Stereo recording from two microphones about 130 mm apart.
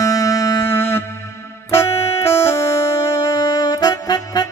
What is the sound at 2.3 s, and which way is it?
Music, 20° left (ahead or behind).